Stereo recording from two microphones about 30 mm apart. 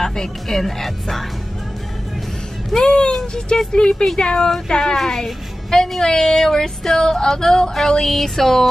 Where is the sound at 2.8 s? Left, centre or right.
Left.